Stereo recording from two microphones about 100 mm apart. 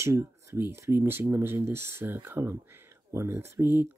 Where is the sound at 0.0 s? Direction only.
30° right (ahead or behind).